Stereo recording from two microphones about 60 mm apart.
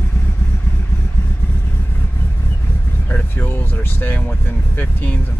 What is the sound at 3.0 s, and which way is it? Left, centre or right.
Vehicle, left.